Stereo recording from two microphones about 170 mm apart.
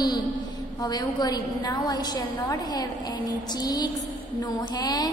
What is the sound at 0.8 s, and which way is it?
A woman's voice, 25° left (ahead or behind).